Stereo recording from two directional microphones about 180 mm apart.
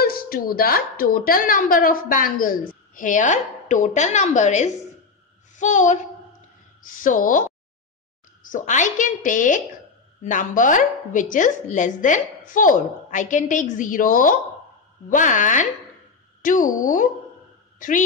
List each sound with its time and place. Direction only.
0.0 s a woman's voice: 55° left (ahead or behind)